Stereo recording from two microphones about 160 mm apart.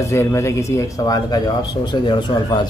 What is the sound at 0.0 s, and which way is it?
Speech, 20° left (ahead or behind).